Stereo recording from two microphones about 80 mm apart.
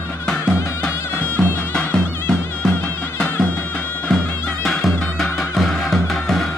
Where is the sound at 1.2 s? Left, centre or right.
Centre.